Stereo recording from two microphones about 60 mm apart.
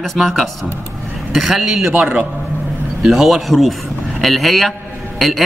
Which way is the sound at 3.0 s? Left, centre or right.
Centre.